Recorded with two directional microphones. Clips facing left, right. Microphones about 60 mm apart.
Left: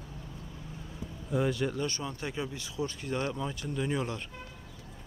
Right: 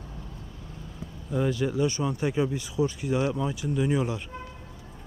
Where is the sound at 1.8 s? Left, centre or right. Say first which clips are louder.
Right 8 dB; centre.